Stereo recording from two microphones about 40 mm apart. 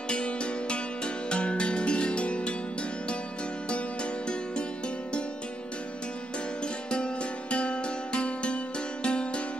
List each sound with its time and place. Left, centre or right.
0.1 s music: left
3.6 s music: left
6.6 s music: left